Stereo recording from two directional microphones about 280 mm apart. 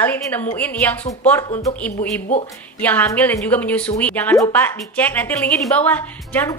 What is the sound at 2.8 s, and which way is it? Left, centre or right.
A woman's voice, centre.